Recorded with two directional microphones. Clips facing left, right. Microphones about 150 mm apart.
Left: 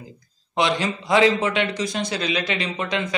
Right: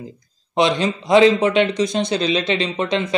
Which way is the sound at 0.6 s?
20° right (ahead or behind).